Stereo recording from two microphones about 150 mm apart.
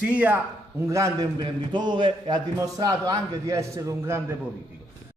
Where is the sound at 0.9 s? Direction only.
25° right (ahead or behind).